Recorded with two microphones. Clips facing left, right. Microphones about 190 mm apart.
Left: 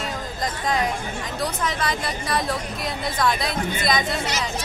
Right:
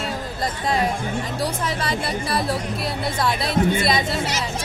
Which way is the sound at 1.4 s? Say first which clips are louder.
Left 3 dB; 30° right (ahead or behind).